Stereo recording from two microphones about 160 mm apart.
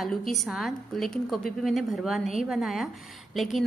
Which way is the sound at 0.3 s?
Centre (ahead or behind).